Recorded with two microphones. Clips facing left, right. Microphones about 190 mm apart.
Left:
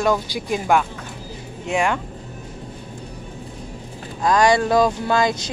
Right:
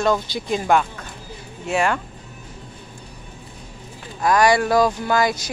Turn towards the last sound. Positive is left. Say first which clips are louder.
# even
turn(degrees=20)  # may be behind; listen again after turning